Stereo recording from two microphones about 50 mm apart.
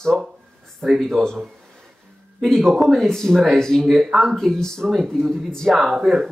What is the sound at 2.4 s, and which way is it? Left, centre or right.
Speech, centre.